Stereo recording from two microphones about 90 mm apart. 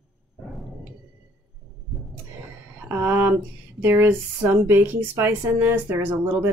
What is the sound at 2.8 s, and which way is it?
Speech, 25° right (ahead or behind).